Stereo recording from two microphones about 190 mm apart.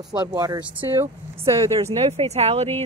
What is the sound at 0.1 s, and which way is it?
Speech, 20° right (ahead or behind).